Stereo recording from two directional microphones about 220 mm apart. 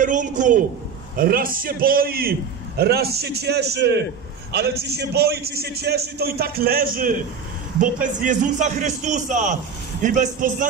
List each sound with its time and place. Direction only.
0.0 s a man's voice: 35° right (ahead or behind)